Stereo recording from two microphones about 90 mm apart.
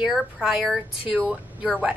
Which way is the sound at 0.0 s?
5° right (ahead or behind).